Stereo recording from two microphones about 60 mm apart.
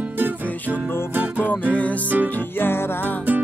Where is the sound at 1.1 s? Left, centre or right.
Right.